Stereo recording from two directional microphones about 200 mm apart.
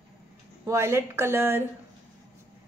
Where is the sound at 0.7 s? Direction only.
15° right (ahead or behind).